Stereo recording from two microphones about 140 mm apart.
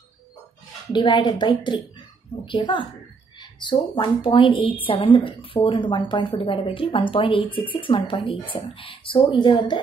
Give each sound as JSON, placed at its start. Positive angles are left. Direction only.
{"t": 0.9, "sound": "a woman's voice", "side_deg": 35}